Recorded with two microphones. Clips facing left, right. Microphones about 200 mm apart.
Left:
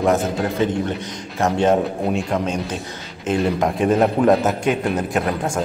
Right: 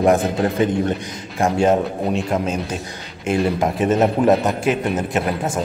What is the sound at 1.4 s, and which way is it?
A man's voice, 10° right (ahead or behind).